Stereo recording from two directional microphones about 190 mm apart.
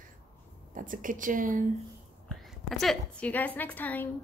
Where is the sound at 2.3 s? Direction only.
Centre (ahead or behind).